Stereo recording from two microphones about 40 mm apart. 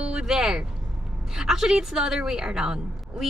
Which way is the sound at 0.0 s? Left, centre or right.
Centre.